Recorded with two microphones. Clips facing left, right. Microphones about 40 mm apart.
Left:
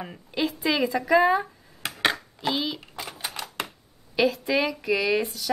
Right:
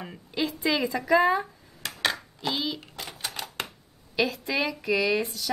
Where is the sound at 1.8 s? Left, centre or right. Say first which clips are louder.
Left 3 dB; left.